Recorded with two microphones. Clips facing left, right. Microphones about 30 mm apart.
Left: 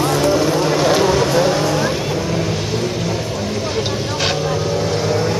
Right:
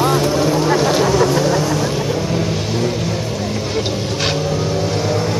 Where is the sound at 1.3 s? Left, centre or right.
Left.